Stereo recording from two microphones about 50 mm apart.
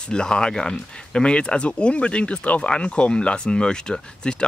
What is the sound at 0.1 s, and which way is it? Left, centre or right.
Speech, centre.